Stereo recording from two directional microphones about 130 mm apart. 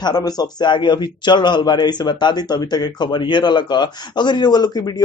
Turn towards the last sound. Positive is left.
turn(degrees=30)  # may be behind; listen again after turning